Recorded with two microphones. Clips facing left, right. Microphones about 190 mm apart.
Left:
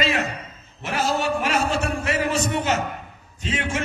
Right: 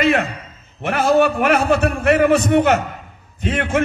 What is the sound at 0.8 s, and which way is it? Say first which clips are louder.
A man's voice: right 8 dB; 55° right (ahead or behind).